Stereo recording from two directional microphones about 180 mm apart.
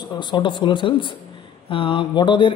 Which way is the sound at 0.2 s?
25° left (ahead or behind).